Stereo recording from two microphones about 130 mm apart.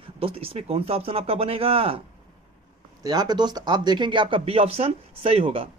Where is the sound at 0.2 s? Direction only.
45° right (ahead or behind).